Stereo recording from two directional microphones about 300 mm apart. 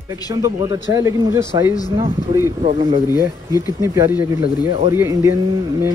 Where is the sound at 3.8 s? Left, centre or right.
Centre.